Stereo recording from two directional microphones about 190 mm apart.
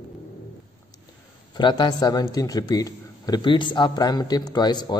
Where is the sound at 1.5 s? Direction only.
25° left (ahead or behind).